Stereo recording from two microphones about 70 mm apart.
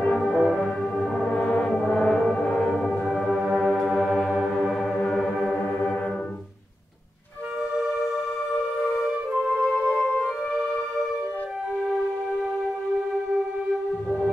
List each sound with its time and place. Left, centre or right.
0.0 s music: centre
3.4 s music: centre
5.6 s music: centre
9.3 s music: centre
9.9 s music: centre
10.2 s music: centre